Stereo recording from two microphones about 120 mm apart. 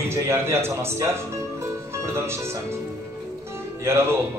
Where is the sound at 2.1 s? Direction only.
20° right (ahead or behind).